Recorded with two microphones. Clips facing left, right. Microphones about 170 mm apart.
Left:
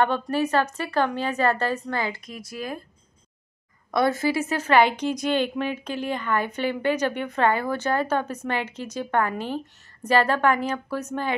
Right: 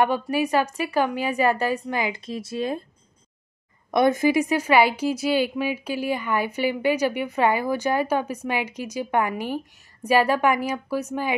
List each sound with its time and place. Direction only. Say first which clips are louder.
0.0 s a woman's voice: right 1 dB; 10° right (ahead or behind)
2.2 s speech: right 6 dB; 25° right (ahead or behind)
3.9 s a woman's voice: right 3 dB; 20° right (ahead or behind)